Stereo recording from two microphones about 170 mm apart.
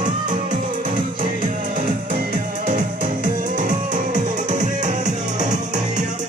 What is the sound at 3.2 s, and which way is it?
Music, 50° right (ahead or behind).